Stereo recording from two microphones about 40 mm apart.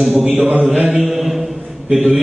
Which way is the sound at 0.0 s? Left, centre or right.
Centre.